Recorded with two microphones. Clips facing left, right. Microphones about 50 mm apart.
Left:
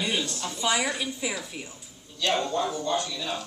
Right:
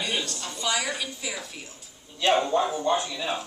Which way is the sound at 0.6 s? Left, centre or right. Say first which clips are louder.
Left 2 dB; centre.